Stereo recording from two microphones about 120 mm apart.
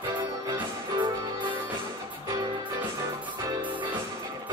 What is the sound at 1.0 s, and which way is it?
Music, 45° right (ahead or behind).